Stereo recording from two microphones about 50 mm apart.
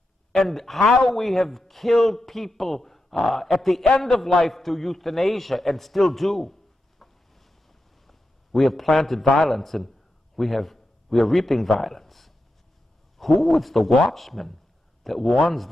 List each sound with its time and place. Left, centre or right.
0.3 s a man's voice: centre